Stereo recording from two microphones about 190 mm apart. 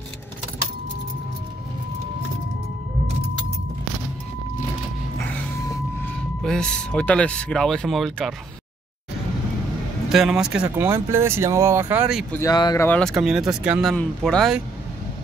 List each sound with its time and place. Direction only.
6.4 s speech: 5° left (ahead or behind)
10.1 s speech: 5° right (ahead or behind)
12.3 s speech: 20° left (ahead or behind)
12.8 s speech: 5° left (ahead or behind)